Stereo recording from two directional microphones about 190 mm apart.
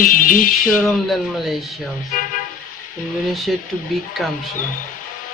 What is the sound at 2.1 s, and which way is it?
Vehicle, 45° left (ahead or behind).